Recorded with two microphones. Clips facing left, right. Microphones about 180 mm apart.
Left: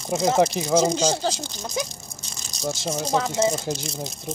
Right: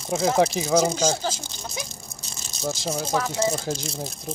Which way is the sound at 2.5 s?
Centre (ahead or behind).